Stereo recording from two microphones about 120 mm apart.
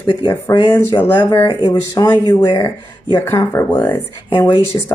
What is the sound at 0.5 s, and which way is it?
Speech, 35° left (ahead or behind).